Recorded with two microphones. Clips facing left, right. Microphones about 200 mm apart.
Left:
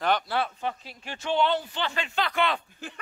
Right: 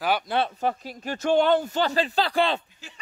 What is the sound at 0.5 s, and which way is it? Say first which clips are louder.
Speech: right 6 dB; 40° right (ahead or behind).